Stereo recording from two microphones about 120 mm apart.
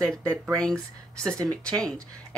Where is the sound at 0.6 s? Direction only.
5° left (ahead or behind).